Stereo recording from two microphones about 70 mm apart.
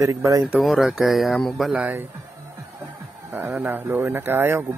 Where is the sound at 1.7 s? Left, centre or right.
Right.